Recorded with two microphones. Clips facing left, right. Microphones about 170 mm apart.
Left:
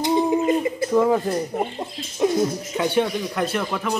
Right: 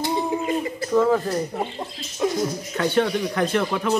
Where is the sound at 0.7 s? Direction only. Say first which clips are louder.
Left 1 dB; 15° left (ahead or behind).